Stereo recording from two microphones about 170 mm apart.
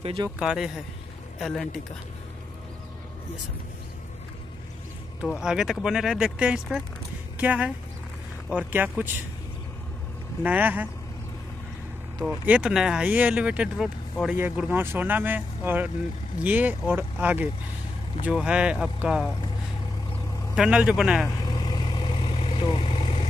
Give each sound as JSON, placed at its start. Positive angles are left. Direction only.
{"t": 0.0, "sound": "speech", "side_deg": -30}
{"t": 0.4, "sound": "speech", "side_deg": -5}
{"t": 5.2, "sound": "speech", "side_deg": -5}
{"t": 10.4, "sound": "speech", "side_deg": -10}
{"t": 12.3, "sound": "speech", "side_deg": -10}
{"t": 20.5, "sound": "speech", "side_deg": -5}
{"t": 21.5, "sound": "vehicle", "side_deg": 25}